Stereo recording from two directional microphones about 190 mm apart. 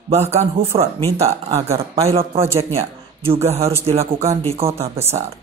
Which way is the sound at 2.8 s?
30° right (ahead or behind).